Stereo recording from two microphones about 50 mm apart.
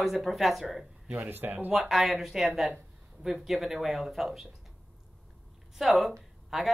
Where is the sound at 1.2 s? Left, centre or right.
Right.